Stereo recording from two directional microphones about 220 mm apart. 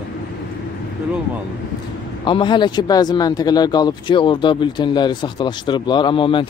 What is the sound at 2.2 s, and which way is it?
Speech, 20° left (ahead or behind).